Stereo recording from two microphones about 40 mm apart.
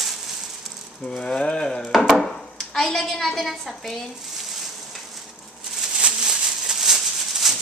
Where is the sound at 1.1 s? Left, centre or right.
Left.